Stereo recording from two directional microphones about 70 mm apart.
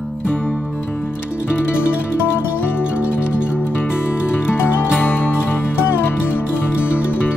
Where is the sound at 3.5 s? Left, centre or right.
Left.